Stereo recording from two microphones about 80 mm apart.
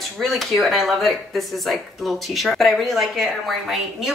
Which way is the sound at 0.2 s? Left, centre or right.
Centre.